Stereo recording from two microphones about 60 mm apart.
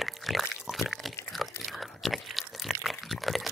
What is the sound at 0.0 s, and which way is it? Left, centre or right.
Pig, centre.